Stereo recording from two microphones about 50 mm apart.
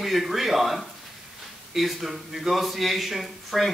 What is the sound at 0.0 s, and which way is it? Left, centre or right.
A man's voice, centre.